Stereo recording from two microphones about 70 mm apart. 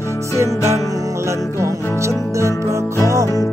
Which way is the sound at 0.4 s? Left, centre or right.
Right.